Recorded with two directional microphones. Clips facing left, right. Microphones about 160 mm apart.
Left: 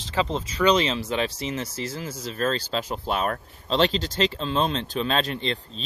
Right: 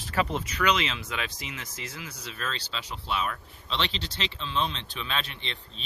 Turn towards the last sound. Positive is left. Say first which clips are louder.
# left 12 dB
turn(degrees=40)  # may be behind; listen again after turning